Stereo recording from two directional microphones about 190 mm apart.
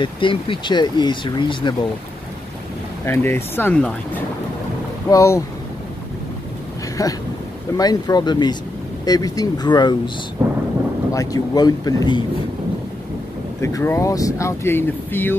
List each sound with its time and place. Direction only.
0.0 s speech: 25° left (ahead or behind)
3.1 s speech: 10° left (ahead or behind)
5.1 s speech: 15° left (ahead or behind)
7.0 s speech: 15° left (ahead or behind)
11.1 s speech: 20° left (ahead or behind)
13.6 s speech: 15° left (ahead or behind)